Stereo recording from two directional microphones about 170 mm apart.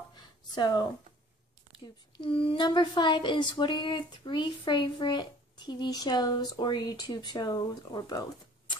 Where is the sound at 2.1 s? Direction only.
30° left (ahead or behind).